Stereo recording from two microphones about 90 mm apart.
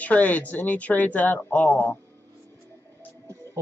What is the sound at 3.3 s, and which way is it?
Music, 35° right (ahead or behind).